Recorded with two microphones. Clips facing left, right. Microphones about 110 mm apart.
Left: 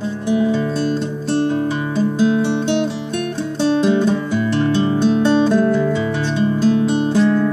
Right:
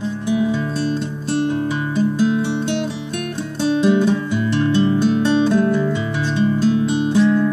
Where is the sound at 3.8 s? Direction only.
35° left (ahead or behind).